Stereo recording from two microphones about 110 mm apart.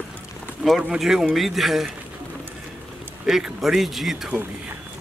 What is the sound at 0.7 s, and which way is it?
Speech, 5° right (ahead or behind).